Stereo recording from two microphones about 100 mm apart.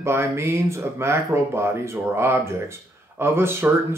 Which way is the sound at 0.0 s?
25° right (ahead or behind).